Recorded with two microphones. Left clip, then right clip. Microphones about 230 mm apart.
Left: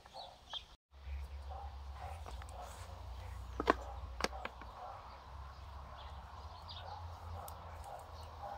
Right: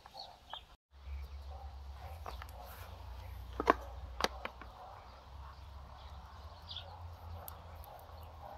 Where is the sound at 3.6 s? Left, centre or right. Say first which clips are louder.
Right 3 dB; centre.